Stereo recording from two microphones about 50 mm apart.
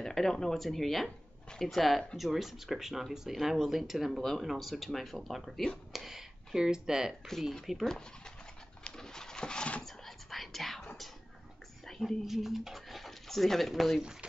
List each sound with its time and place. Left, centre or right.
0.0 s speech: centre
4.2 s speech: centre
7.6 s speech: centre
8.8 s a sound: centre
9.8 s whispering: centre
11.8 s a sound: centre
12.3 s speech: centre